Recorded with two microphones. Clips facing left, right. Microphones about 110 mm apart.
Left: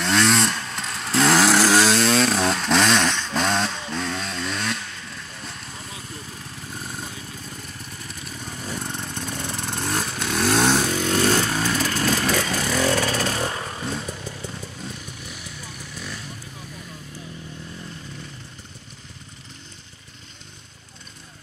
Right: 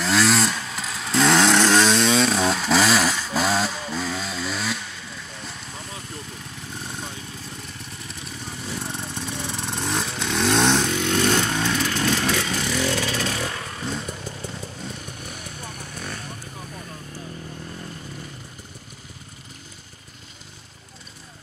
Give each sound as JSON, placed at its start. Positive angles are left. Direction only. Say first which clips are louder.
{"t": 0.0, "sound": "vehicle", "louder": "even", "side_deg": 0}
{"t": 8.7, "sound": "motorcycle", "louder": "even", "side_deg": 0}
{"t": 10.9, "sound": "vehicle", "louder": "left 1 dB", "side_deg": 40}
{"t": 13.8, "sound": "vehicle", "louder": "even", "side_deg": 0}
{"t": 15.1, "sound": "vehicle", "louder": "right 2 dB", "side_deg": -45}